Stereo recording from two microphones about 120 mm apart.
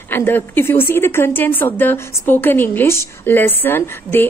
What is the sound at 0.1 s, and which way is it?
A woman's voice, 15° left (ahead or behind).